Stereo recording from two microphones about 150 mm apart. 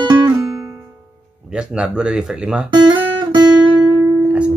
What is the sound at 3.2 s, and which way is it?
Guitar, 30° right (ahead or behind).